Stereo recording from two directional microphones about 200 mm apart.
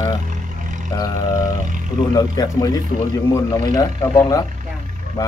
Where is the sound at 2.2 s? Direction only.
20° left (ahead or behind).